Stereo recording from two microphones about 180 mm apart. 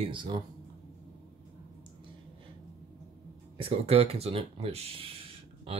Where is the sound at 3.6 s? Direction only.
35° right (ahead or behind).